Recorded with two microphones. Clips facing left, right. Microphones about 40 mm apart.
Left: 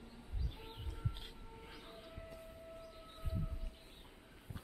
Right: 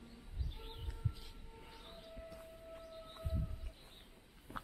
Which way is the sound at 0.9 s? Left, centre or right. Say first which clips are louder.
Left 1 dB; left.